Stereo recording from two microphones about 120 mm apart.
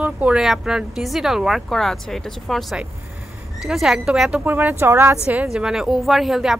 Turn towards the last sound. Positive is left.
turn(degrees=0)  # may be behind; listen again after turning